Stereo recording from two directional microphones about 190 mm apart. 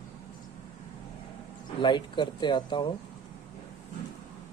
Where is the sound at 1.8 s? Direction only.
25° left (ahead or behind).